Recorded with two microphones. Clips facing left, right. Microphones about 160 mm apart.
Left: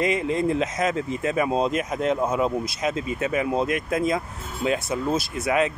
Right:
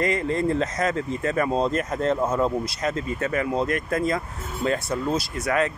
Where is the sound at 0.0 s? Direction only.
15° left (ahead or behind).